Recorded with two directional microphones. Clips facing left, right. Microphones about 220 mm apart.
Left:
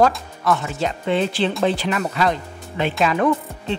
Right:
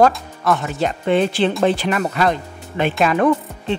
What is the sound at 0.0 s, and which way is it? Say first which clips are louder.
Speech: right 2 dB; 50° right (ahead or behind).